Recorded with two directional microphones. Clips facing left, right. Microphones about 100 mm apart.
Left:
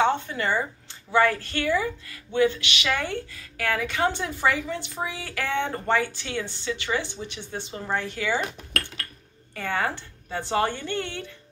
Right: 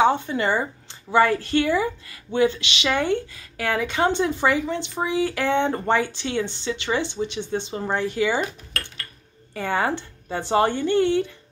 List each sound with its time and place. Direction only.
0.0 s speech: 15° right (ahead or behind)
9.6 s speech: 20° right (ahead or behind)